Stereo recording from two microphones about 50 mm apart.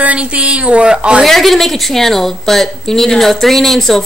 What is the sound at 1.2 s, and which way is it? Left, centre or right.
A woman's voice, centre.